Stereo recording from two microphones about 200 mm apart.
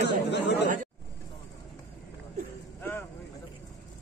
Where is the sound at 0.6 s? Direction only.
40° right (ahead or behind).